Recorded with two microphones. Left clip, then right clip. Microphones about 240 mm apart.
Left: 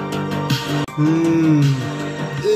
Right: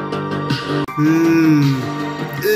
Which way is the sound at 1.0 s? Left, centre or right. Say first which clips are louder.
Right 3 dB; centre.